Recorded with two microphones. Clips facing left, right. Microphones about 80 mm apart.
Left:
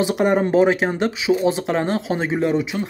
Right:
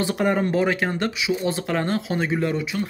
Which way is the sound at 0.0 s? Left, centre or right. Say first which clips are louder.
Left 4 dB; centre.